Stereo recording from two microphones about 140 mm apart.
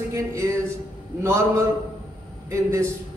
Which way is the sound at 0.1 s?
20° right (ahead or behind).